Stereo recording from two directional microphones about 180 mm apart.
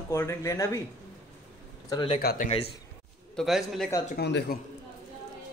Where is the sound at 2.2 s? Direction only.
50° left (ahead or behind).